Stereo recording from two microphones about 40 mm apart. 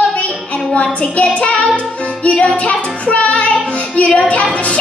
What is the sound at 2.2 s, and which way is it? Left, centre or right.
Music, left.